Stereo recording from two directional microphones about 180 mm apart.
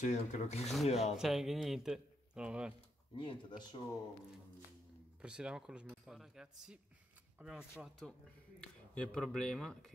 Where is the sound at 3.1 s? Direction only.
30° left (ahead or behind).